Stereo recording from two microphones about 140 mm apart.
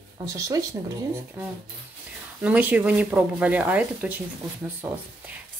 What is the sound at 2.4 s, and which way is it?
Speech, 10° right (ahead or behind).